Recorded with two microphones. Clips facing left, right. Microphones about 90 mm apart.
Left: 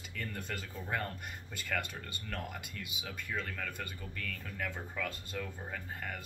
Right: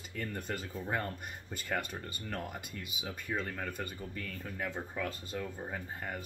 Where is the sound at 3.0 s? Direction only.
30° right (ahead or behind).